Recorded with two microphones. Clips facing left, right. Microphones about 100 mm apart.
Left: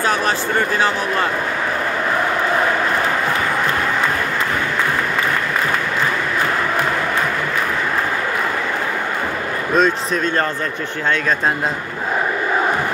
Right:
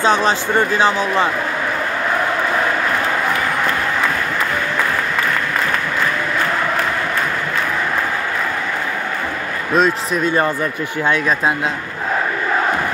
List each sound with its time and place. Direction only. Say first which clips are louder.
0.0 s speech: right 3 dB; 25° right (ahead or behind)
9.8 s speech: right 1 dB; 5° right (ahead or behind)